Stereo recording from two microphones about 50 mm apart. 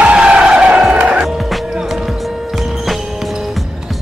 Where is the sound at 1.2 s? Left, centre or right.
Centre.